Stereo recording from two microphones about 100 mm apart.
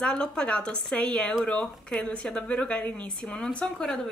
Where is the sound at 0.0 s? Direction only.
10° left (ahead or behind).